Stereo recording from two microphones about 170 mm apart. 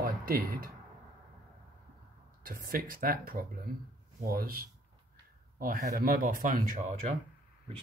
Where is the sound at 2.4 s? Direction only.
55° right (ahead or behind).